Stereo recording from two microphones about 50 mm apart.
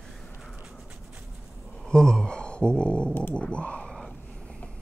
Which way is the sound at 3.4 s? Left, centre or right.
Left.